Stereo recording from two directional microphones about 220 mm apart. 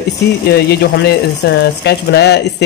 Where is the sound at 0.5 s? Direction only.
50° left (ahead or behind).